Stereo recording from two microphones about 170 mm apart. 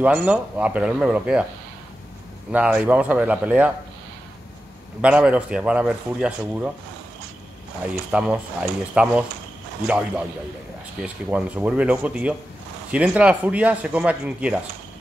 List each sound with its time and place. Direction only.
0.0 s speech: 5° right (ahead or behind)
2.5 s speech: 10° right (ahead or behind)
5.0 s speech: 5° right (ahead or behind)
8.1 s speech: 5° right (ahead or behind)